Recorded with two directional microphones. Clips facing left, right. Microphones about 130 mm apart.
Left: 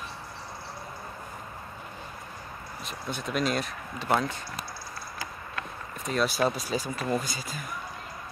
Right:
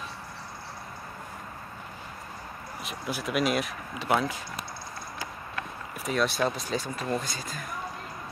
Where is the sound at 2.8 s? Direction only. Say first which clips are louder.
Right 2 dB; 5° right (ahead or behind).